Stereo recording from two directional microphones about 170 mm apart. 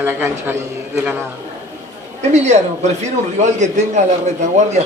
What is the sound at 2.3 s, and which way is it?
Speech, 40° right (ahead or behind).